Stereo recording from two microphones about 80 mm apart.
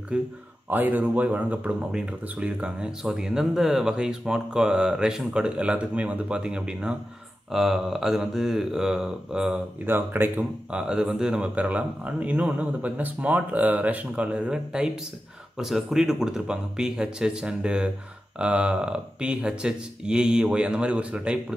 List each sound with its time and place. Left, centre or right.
0.1 s speech: centre
9.8 s speech: right
10.7 s speech: centre